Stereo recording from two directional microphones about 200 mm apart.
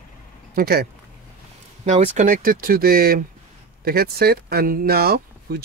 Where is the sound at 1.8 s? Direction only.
35° right (ahead or behind); by 5.6 s 50° right (ahead or behind).